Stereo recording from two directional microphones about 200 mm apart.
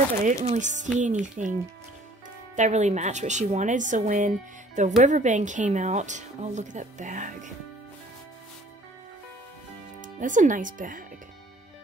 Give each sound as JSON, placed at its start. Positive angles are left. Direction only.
{"t": 0.2, "sound": "a woman's voice", "side_deg": -40}
{"t": 2.5, "sound": "a woman's voice", "side_deg": -35}
{"t": 10.0, "sound": "speech", "side_deg": -40}